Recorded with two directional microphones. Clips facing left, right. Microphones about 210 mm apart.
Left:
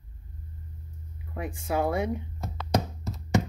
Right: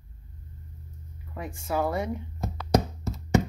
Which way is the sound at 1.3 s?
15° left (ahead or behind).